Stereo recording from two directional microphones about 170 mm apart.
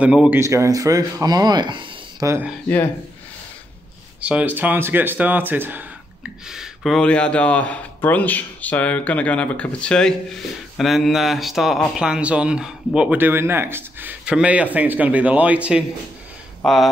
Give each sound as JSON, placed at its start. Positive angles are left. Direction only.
{"t": 0.0, "sound": "speech", "side_deg": -5}
{"t": 0.4, "sound": "speech", "side_deg": -15}
{"t": 4.2, "sound": "speech", "side_deg": -10}